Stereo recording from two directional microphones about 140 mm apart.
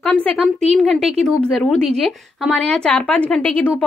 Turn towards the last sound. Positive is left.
turn(degrees=10)  # may be behind; listen again after turning